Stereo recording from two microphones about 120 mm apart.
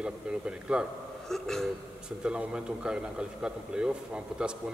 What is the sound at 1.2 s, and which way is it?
Speech, 5° left (ahead or behind).